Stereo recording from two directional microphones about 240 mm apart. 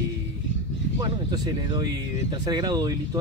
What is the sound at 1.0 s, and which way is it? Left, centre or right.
Speech, centre.